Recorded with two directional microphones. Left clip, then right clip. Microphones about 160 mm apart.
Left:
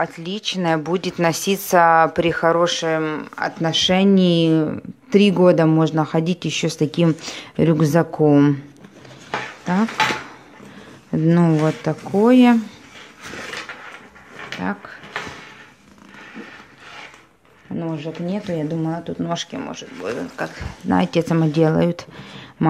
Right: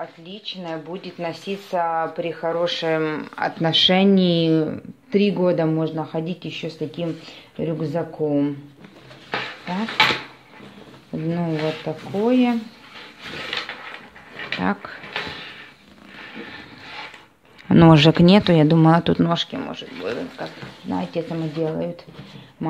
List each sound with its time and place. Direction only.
0.2 s speech: 65° left (ahead or behind); by 2.6 s 45° left (ahead or behind)
2.6 s speech: 20° left (ahead or behind)
2.9 s speech: 5° left (ahead or behind)
5.1 s speech: 30° left (ahead or behind); by 8.5 s 55° left (ahead or behind)
11.1 s speech: 45° left (ahead or behind)
14.6 s speech: 10° right (ahead or behind)
17.6 s speech: 70° right (ahead or behind)
18.2 s speech: 40° right (ahead or behind)
19.2 s speech: 5° right (ahead or behind)
20.4 s speech: 40° left (ahead or behind)